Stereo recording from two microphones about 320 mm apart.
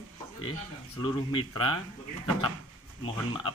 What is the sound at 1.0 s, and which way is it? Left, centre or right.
Speech, centre.